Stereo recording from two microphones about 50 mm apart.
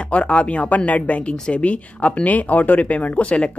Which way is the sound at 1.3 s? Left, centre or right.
Centre.